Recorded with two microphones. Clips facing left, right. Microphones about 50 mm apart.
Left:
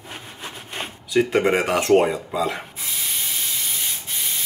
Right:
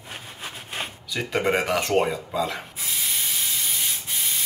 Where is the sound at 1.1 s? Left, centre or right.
Centre.